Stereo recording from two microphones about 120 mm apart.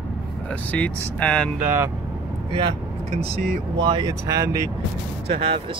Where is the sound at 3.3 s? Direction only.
45° right (ahead or behind).